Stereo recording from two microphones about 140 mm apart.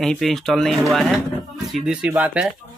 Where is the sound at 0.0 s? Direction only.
Centre (ahead or behind).